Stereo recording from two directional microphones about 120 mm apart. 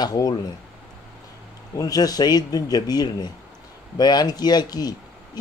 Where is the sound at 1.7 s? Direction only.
30° left (ahead or behind).